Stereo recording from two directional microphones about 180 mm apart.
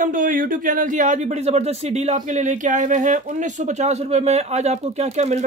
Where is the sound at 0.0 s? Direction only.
50° right (ahead or behind).